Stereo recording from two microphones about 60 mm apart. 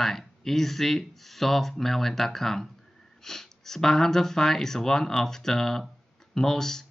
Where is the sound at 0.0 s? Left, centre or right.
Centre.